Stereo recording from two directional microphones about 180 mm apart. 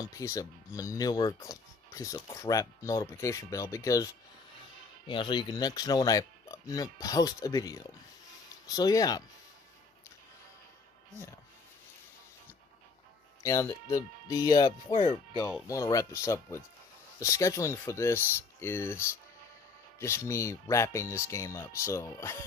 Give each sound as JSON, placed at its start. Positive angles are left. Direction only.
{"t": 0.1, "sound": "speech", "side_deg": 15}
{"t": 13.4, "sound": "speech", "side_deg": 15}